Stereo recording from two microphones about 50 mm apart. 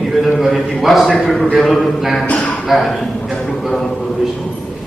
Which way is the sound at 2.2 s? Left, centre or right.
Left.